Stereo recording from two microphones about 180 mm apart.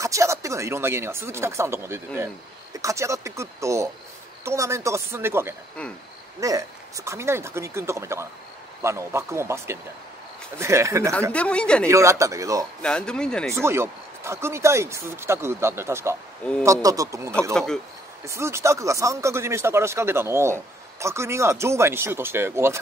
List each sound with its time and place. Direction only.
0.0 s speech: 15° right (ahead or behind)
11.3 s speech: 5° left (ahead or behind)
11.9 s speech: 15° right (ahead or behind)
12.8 s speech: 5° left (ahead or behind)
13.5 s speech: 15° right (ahead or behind)